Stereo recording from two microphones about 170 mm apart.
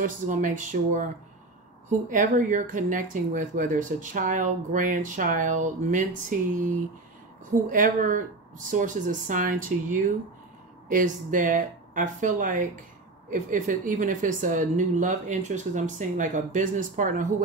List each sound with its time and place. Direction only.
0.0 s speech: 50° right (ahead or behind)
7.7 s speech: 50° right (ahead or behind)